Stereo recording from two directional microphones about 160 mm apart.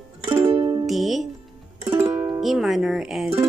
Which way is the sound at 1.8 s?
10° right (ahead or behind).